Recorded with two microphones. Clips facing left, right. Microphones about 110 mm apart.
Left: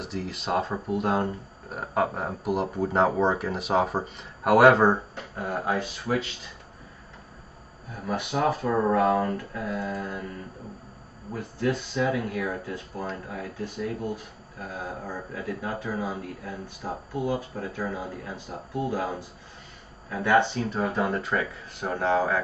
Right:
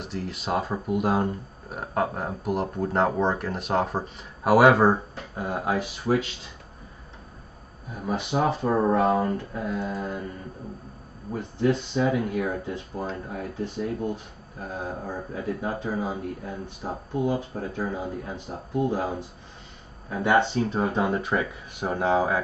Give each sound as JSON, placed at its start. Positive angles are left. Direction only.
{"t": 0.0, "sound": "speech", "side_deg": 0}
{"t": 8.0, "sound": "speech", "side_deg": -20}
{"t": 11.3, "sound": "speech", "side_deg": -25}